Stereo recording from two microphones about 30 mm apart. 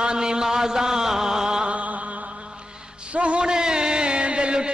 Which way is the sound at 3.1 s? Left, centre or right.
Right.